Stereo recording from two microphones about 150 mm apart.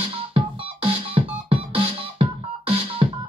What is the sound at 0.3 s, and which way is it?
Music, 35° right (ahead or behind).